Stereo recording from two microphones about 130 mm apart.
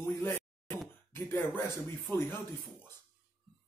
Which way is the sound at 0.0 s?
15° left (ahead or behind).